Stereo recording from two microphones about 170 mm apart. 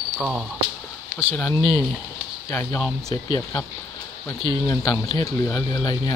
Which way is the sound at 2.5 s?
10° left (ahead or behind).